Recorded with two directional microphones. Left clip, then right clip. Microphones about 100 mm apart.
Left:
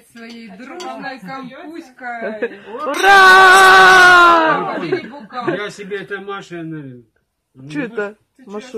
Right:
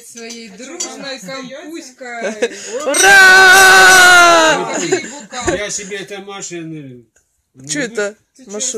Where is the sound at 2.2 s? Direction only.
15° right (ahead or behind).